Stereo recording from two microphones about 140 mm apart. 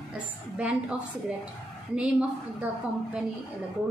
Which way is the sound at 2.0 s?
10° right (ahead or behind).